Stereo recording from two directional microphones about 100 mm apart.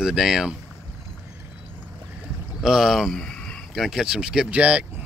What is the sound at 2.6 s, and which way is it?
Speech, 5° right (ahead or behind).